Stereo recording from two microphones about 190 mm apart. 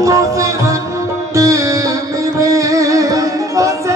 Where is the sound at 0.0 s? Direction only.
15° right (ahead or behind).